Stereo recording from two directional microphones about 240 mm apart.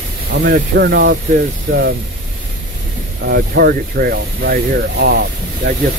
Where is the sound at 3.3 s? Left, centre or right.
Right.